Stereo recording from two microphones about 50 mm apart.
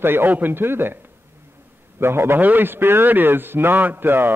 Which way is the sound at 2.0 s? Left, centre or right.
Right.